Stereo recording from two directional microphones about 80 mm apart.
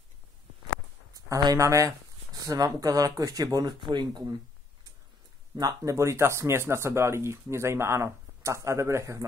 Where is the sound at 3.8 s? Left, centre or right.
Right.